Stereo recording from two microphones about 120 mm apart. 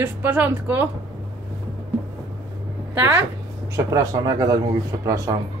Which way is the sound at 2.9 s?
20° right (ahead or behind).